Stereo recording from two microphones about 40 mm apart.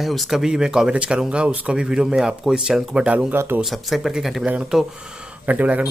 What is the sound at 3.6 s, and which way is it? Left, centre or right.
Speech, centre.